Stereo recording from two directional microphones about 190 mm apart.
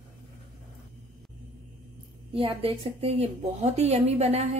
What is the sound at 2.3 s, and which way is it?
A woman's voice, 30° right (ahead or behind).